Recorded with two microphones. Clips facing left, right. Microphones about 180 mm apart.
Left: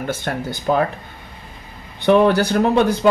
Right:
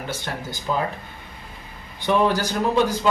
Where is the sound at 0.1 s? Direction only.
55° left (ahead or behind).